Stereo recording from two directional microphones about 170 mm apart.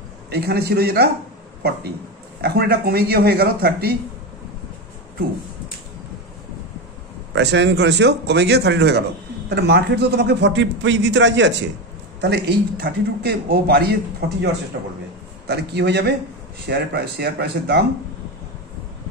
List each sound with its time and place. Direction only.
0.3 s a man's voice: 70° right (ahead or behind)
2.4 s a man's voice: 70° right (ahead or behind)
7.3 s a man's voice: 90° right
12.2 s a man's voice: 75° right (ahead or behind)
15.4 s a man's voice: 75° right (ahead or behind)